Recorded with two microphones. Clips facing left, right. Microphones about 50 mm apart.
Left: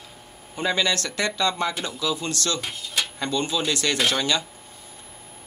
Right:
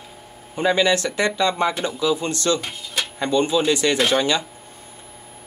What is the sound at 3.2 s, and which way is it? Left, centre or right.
Speech, centre.